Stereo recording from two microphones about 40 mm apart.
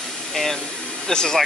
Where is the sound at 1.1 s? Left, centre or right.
Centre.